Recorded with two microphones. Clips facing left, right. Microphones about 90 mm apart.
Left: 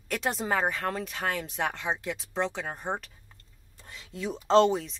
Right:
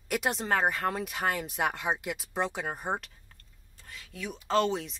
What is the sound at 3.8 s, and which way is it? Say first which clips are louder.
Speech: left 5 dB; 25° left (ahead or behind).